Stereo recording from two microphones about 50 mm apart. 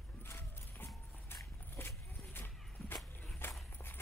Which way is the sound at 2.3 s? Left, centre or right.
Left.